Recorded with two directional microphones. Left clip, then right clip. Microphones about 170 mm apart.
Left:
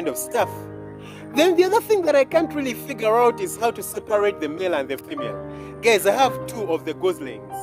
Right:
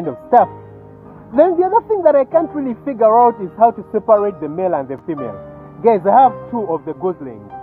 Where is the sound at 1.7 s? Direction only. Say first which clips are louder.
Right 5 dB; 25° left (ahead or behind).